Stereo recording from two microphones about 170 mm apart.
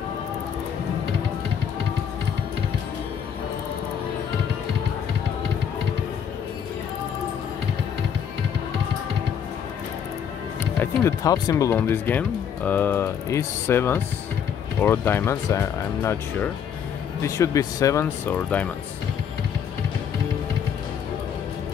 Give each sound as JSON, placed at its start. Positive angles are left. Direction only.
{"t": 10.6, "sound": "speech", "side_deg": 15}